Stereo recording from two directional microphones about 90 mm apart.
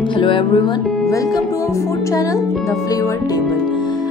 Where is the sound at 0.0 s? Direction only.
65° left (ahead or behind).